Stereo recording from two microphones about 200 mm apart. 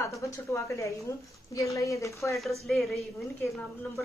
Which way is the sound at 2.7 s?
Centre (ahead or behind).